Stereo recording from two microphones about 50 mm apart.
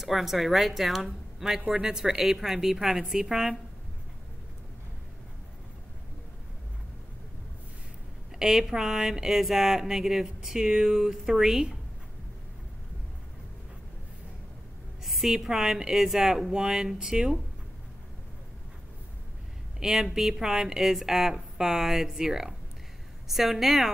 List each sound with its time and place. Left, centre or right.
0.0 s a woman's voice: centre
8.4 s speech: centre
15.0 s a sound: centre
15.3 s speech: centre
19.8 s a woman's voice: centre